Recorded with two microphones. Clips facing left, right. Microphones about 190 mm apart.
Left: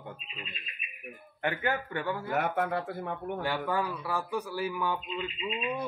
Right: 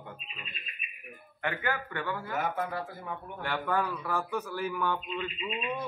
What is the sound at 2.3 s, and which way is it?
Speech, 65° left (ahead or behind).